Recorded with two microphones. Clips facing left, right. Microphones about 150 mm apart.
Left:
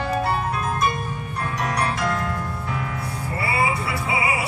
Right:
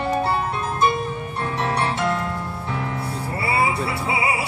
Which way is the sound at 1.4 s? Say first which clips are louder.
Right 1 dB; 30° right (ahead or behind).